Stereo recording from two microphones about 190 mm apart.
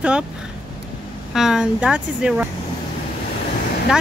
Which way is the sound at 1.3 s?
Centre (ahead or behind).